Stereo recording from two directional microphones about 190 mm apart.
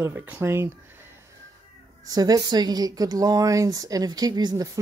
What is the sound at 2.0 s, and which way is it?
A woman's voice, 20° right (ahead or behind).